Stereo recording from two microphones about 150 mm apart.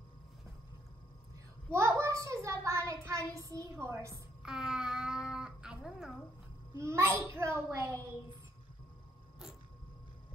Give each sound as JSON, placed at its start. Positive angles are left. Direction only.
{"t": 1.7, "sound": "child singing", "side_deg": -20}
{"t": 4.4, "sound": "a sound", "side_deg": -5}
{"t": 6.8, "sound": "a child's voice", "side_deg": -15}